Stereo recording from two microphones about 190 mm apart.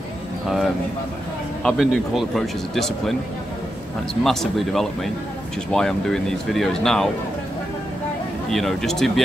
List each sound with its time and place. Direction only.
1.6 s speech: centre (ahead or behind)
8.5 s speech: centre (ahead or behind)